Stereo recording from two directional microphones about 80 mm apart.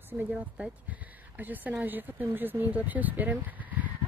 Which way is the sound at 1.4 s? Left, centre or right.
Right.